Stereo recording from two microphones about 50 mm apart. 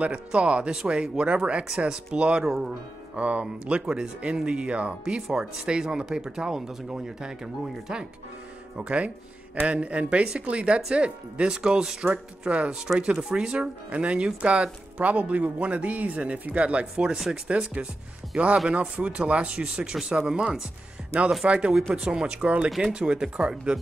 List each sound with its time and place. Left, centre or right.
0.0 s speech: right
2.4 s speech: centre
3.2 s speech: right
12.7 s speech: centre